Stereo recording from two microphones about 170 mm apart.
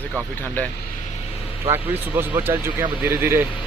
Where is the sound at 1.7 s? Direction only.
15° right (ahead or behind).